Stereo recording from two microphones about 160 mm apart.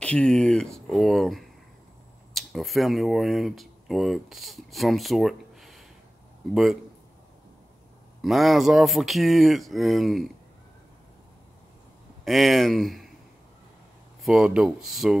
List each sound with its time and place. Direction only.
0.0 s speech: 5° left (ahead or behind)
8.2 s speech: centre (ahead or behind)
12.3 s speech: centre (ahead or behind)
14.2 s speech: 5° right (ahead or behind)